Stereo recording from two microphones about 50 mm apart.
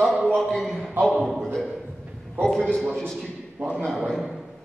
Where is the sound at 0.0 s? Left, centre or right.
Centre.